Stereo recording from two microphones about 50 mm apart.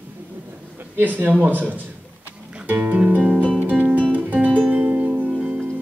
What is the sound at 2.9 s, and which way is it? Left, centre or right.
Music, right.